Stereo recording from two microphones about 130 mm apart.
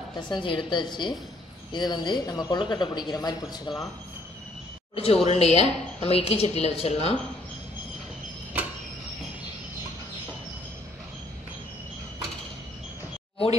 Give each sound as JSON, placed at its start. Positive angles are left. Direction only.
{"t": 0.3, "sound": "speech", "side_deg": 40}
{"t": 4.9, "sound": "a woman's voice", "side_deg": 50}